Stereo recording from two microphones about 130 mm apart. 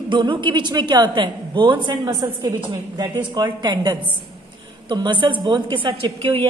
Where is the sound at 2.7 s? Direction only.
35° right (ahead or behind).